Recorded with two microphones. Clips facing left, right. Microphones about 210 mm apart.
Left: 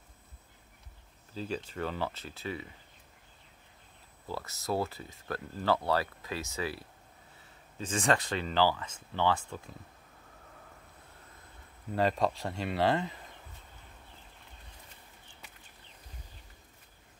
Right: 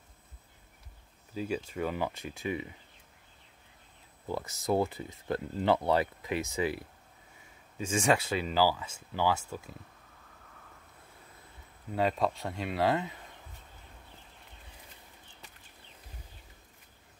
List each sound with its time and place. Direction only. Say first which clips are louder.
1.3 s speech: right 3 dB; 10° right (ahead or behind)
4.3 s speech: right 4 dB; 15° right (ahead or behind)
11.9 s speech: even; centre (ahead or behind)